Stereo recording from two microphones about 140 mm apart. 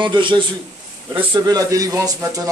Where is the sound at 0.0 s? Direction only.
35° right (ahead or behind).